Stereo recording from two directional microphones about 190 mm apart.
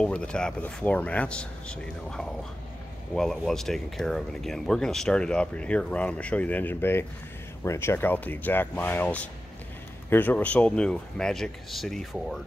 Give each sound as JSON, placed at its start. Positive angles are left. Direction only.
{"t": 0.0, "sound": "speech", "side_deg": 5}